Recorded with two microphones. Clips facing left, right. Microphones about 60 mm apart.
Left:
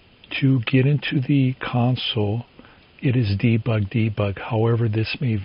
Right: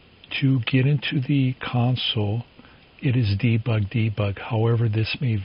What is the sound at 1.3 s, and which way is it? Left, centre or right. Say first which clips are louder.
Speech: left 3 dB; centre.